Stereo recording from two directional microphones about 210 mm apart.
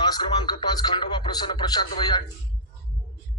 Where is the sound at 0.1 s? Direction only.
20° left (ahead or behind).